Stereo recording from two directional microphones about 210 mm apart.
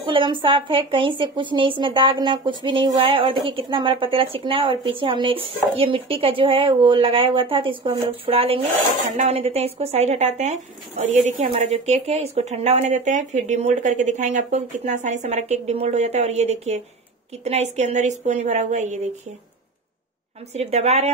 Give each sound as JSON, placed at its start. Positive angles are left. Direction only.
{"t": 0.0, "sound": "a woman's voice", "side_deg": -25}
{"t": 20.5, "sound": "a woman's voice", "side_deg": -30}